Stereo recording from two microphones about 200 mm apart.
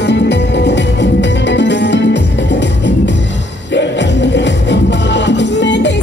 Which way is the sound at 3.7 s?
60° left (ahead or behind).